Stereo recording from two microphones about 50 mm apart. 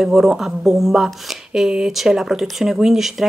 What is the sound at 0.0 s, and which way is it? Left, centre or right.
Speech, centre.